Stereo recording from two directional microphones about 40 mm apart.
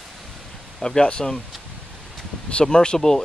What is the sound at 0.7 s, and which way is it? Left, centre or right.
Speech, left.